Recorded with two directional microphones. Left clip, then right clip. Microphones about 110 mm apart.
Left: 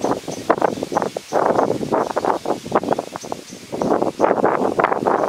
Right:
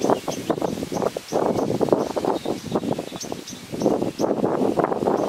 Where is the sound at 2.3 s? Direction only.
55° left (ahead or behind).